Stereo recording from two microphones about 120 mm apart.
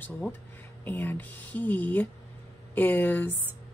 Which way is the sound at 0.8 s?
15° left (ahead or behind).